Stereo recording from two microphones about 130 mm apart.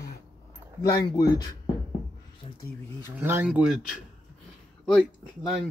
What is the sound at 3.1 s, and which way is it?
Speech, 20° right (ahead or behind).